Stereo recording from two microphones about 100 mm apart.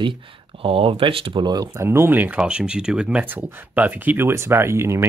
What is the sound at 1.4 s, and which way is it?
Speech, 45° right (ahead or behind).